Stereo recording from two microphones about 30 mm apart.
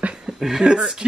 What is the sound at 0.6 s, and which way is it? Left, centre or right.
Speech, right.